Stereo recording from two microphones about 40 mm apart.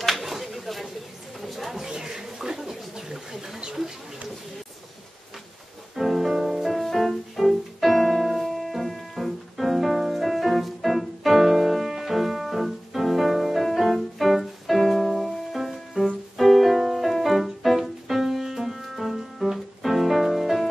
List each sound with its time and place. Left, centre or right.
0.0 s a sound: centre
1.8 s music: centre
2.2 s bird: centre
5.9 s music: centre